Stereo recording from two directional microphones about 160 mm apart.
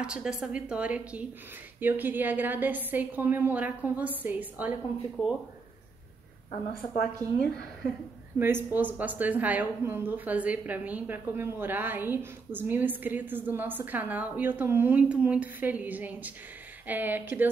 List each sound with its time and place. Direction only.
0.0 s a woman's voice: 5° right (ahead or behind)
7.2 s a woman's voice: 20° right (ahead or behind)